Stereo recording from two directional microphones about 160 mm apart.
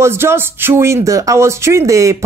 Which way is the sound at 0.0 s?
15° right (ahead or behind).